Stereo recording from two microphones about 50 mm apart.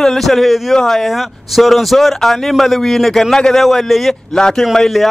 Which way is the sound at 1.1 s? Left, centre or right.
Centre.